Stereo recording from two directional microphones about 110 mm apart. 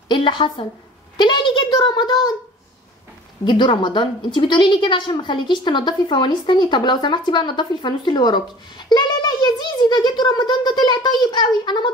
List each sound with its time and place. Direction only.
0.1 s a woman's voice: 45° left (ahead or behind)
1.1 s a sound: 45° left (ahead or behind)
3.4 s a woman's voice: 45° left (ahead or behind)